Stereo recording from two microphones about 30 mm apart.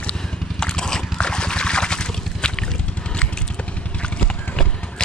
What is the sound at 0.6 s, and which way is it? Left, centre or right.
Liquid, left.